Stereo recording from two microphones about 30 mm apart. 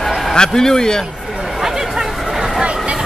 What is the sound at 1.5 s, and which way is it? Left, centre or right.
Chatter, centre.